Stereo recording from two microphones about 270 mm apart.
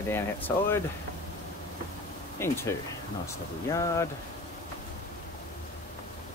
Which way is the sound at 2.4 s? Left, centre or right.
Centre.